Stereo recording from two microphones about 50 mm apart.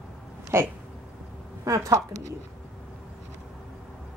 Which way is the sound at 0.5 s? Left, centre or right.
Right.